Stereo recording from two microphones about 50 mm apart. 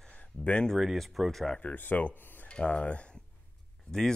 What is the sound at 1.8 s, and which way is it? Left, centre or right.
Speech, left.